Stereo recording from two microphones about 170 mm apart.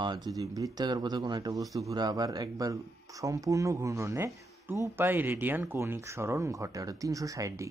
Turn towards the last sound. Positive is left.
turn(degrees=-20)  # may be behind; listen again after turning